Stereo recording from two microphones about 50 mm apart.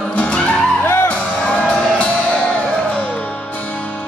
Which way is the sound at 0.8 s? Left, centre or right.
Left.